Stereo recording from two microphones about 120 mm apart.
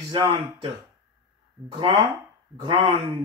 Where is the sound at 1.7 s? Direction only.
30° right (ahead or behind).